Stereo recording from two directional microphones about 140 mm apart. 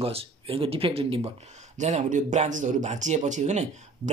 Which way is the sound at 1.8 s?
60° right (ahead or behind).